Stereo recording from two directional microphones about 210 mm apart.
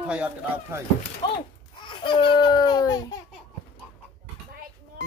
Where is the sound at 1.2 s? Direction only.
20° left (ahead or behind).